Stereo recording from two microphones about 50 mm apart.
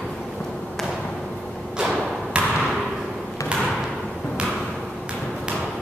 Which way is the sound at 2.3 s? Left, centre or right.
Right.